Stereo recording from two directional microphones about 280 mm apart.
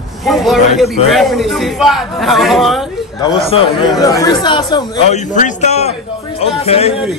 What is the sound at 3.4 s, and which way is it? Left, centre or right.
A man's voice, centre.